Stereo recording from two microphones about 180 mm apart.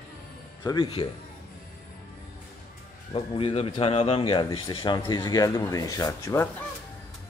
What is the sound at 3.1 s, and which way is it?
Speech, 30° left (ahead or behind).